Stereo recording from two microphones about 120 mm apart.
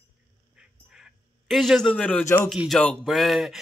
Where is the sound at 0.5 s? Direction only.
5° right (ahead or behind).